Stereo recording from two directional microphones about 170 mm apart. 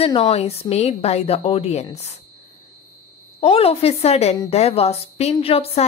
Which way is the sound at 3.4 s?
35° left (ahead or behind).